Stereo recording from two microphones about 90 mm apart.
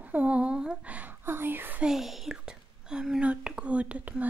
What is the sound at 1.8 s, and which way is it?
Speech, 5° right (ahead or behind).